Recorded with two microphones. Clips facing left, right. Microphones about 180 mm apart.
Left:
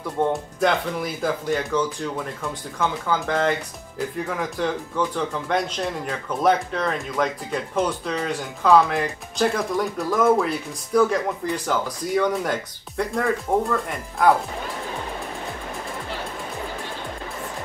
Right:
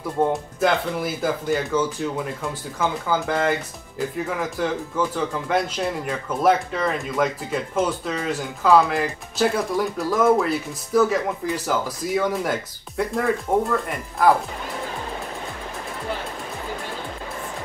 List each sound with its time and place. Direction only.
0.2 s speech: centre (ahead or behind)